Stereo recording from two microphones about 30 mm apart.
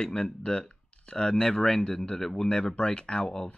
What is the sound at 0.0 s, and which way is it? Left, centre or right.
Speech, left.